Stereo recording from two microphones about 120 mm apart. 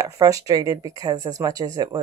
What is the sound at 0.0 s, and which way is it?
Speech, 30° right (ahead or behind).